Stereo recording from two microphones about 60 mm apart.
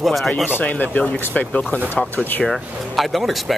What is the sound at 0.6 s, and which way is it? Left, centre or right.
Speech, left.